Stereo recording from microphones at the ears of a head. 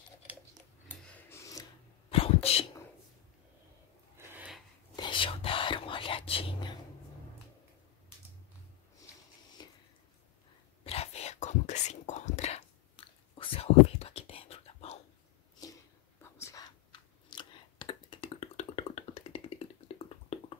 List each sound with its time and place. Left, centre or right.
2.0 s sneeze: left
5.0 s whispering: left
10.8 s whispering: left
16.5 s a sound: left